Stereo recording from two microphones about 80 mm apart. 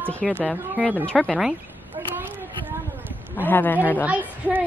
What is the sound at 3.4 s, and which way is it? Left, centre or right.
Speech, left.